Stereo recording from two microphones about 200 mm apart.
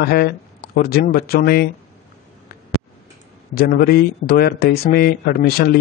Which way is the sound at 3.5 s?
50° left (ahead or behind).